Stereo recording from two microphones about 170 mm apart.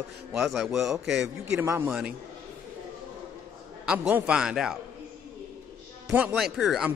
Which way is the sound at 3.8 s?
5° right (ahead or behind).